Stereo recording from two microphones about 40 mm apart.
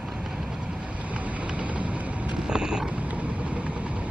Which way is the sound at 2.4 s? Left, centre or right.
Centre.